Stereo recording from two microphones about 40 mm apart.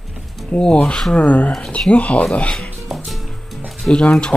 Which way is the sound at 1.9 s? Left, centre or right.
Left.